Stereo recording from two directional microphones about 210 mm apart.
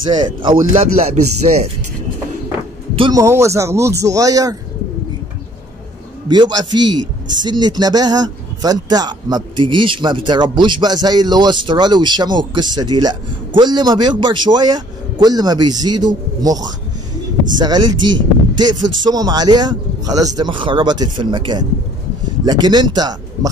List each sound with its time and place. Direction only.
0.0 s a man's voice: 20° right (ahead or behind)
3.0 s speech: 15° right (ahead or behind)
6.2 s a man's voice: 20° right (ahead or behind)
17.6 s a man's voice: 20° right (ahead or behind)